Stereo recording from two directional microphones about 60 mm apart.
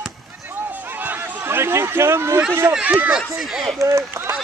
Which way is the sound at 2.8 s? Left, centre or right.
Right.